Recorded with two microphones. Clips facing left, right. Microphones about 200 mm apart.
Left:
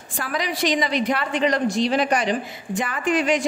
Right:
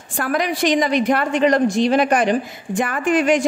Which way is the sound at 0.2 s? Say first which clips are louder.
Right 5 dB; 55° right (ahead or behind).